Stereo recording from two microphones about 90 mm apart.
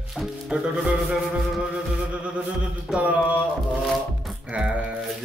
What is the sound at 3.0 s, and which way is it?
Speech, 15° right (ahead or behind).